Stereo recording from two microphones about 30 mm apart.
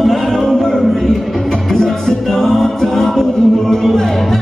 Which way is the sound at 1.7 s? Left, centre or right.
Centre.